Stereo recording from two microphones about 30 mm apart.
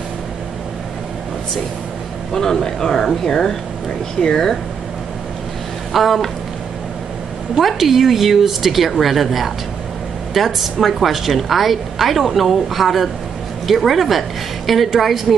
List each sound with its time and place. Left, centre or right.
2.3 s speech: centre
5.9 s a woman's voice: centre
7.5 s a woman's voice: centre